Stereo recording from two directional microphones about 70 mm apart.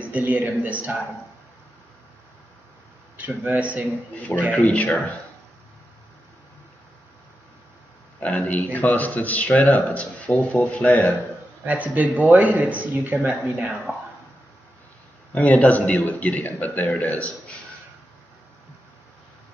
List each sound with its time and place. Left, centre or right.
0.0 s speech: right
3.2 s speech: right
4.3 s a man's voice: centre
4.6 s a man's voice: left
8.2 s a man's voice: left
9.7 s speech: left
9.9 s a man's voice: centre
11.6 s speech: right
15.3 s a man's voice: left